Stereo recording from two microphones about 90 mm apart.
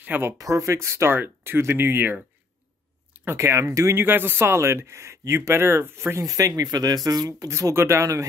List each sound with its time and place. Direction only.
0.0 s speech: 20° right (ahead or behind)
0.4 s speech: 40° right (ahead or behind); by 2.1 s 25° right (ahead or behind)
3.3 s speech: 30° right (ahead or behind)
4.0 s speech: 25° right (ahead or behind)